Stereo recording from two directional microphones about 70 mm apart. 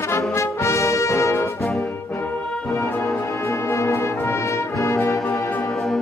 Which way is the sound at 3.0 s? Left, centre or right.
Left.